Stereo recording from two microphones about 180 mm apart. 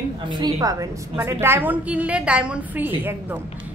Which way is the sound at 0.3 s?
20° right (ahead or behind).